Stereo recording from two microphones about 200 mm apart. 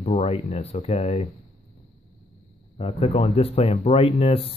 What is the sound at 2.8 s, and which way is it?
Speech, 30° left (ahead or behind).